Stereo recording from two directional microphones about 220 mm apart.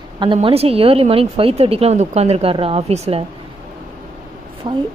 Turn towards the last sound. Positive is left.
turn(degrees=-20)  # may be behind; listen again after turning